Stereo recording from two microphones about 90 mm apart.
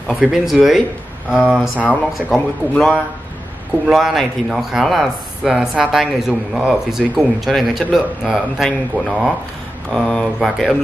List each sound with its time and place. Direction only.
0.1 s speech: 10° right (ahead or behind)
2.2 s a man's voice: 15° left (ahead or behind)
3.8 s speech: 5° right (ahead or behind)